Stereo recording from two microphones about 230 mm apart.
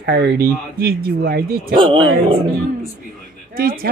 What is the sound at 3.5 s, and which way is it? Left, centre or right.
Speech, right.